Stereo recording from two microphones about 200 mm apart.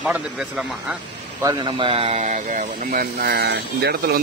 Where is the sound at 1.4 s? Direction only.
20° right (ahead or behind).